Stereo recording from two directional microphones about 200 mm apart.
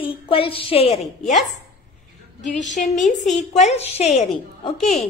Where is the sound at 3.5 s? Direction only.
35° left (ahead or behind).